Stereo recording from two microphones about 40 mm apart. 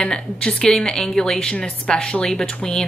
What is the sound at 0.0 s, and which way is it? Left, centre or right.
Speech, left.